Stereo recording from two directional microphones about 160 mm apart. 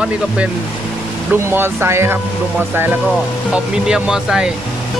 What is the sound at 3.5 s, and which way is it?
Speech, 5° right (ahead or behind).